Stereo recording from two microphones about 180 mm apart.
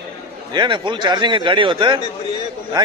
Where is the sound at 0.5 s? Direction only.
25° right (ahead or behind).